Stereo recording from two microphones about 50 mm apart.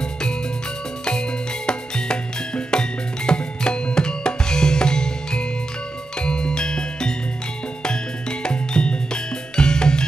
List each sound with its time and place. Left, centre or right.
1.7 s music: centre